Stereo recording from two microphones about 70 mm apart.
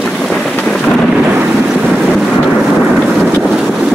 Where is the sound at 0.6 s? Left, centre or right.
Centre.